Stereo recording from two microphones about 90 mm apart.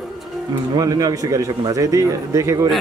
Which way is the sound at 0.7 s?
45° right (ahead or behind).